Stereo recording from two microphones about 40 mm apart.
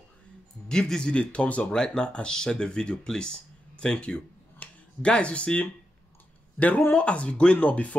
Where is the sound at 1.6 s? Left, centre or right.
Centre.